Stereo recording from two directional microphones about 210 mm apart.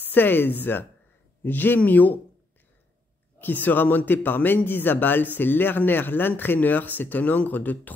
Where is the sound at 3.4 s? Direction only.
10° left (ahead or behind).